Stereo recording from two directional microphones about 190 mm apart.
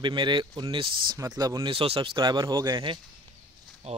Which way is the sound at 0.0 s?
25° right (ahead or behind).